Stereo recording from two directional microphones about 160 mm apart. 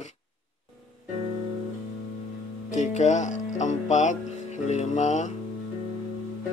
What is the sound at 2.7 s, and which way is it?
Speech, 45° left (ahead or behind).